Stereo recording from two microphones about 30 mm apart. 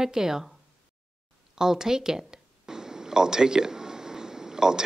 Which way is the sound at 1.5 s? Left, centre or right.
Centre.